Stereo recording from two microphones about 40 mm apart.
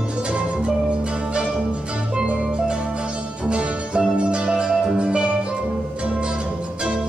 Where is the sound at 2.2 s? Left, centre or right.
Right.